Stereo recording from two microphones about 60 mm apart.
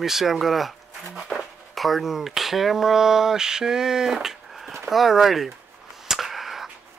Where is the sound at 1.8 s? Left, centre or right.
Centre.